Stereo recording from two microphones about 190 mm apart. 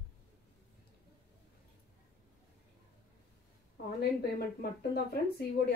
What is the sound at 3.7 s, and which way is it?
A woman's voice, 60° left (ahead or behind).